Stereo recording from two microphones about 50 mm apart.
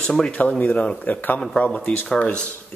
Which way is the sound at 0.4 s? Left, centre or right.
Left.